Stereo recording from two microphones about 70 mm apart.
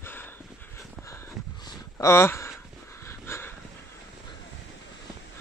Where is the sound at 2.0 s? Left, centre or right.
Left.